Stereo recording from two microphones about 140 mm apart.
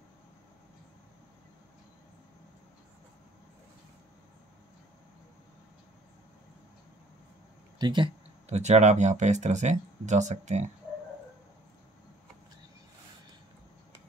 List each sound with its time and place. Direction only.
7.8 s speech: 35° right (ahead or behind)
8.5 s speech: 50° right (ahead or behind)